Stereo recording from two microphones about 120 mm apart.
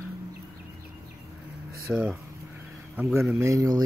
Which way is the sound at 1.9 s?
5° right (ahead or behind).